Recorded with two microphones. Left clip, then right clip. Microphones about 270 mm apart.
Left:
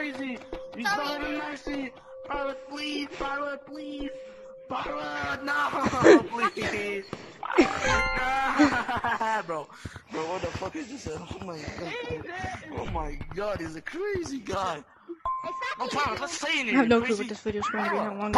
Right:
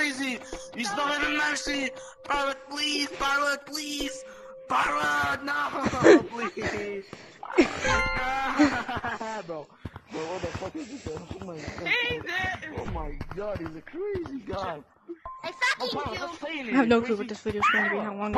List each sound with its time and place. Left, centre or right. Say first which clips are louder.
0.0 s music: right 5 dB; right
2.7 s music: right 5 dB; centre
3.3 s a sound: right 9 dB; right
5.4 s speech: left 2 dB; centre
10.1 s speech: left 2 dB; centre
11.9 s a sound: right 11 dB; right
12.9 s speech: left 2 dB; left
15.4 s music: right 5 dB; right
16.0 s speech: left 4 dB; left
16.7 s speech: right 2 dB; centre